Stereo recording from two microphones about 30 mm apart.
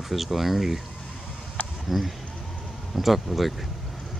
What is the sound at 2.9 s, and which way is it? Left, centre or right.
Speech, centre.